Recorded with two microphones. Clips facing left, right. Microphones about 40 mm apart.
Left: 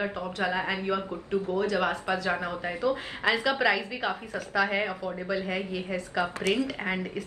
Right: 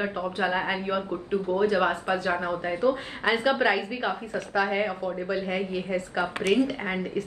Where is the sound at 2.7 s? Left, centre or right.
Right.